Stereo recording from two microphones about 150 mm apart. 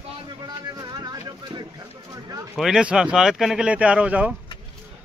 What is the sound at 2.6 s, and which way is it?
Speech, 5° right (ahead or behind).